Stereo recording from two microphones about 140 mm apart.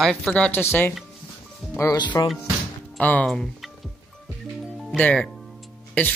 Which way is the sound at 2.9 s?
10° left (ahead or behind).